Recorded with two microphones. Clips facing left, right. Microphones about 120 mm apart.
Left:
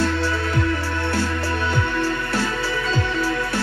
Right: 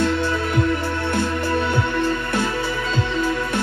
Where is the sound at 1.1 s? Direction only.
20° right (ahead or behind).